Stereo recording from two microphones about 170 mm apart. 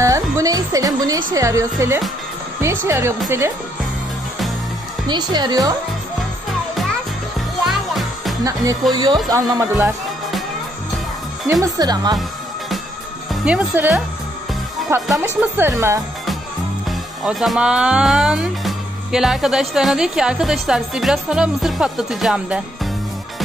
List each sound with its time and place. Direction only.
0.0 s a woman's voice: 20° right (ahead or behind)
5.0 s a woman's voice: 25° right (ahead or behind)
7.6 s music: centre (ahead or behind)
8.9 s a woman's voice: 25° right (ahead or behind)
11.6 s a woman's voice: 25° right (ahead or behind)
12.2 s music: centre (ahead or behind)
13.3 s speech: 10° right (ahead or behind)
15.1 s speech: 15° right (ahead or behind)
17.2 s speech: centre (ahead or behind)